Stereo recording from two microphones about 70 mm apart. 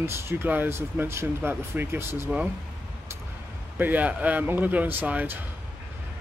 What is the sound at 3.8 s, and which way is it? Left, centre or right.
Speech, right.